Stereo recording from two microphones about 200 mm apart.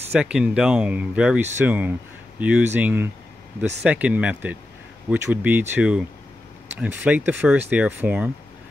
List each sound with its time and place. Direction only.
0.1 s speech: 5° right (ahead or behind)